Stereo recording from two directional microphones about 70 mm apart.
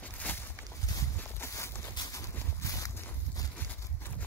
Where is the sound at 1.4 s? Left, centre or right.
Left.